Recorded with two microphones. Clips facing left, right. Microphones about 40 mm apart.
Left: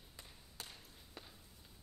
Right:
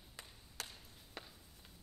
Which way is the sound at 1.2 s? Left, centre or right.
Right.